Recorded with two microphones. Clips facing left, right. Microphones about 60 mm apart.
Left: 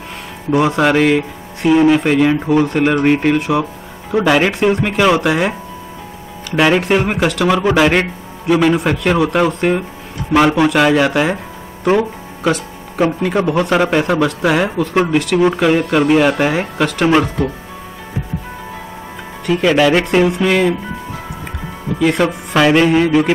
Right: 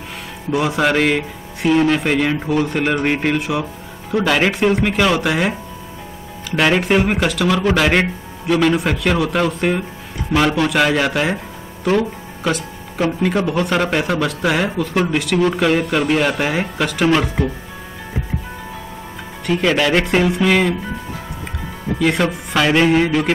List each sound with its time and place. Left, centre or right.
0.5 s a man's voice: centre
11.8 s speech: centre
12.4 s music: centre
13.5 s speech: centre
19.4 s speech: centre
21.9 s speech: centre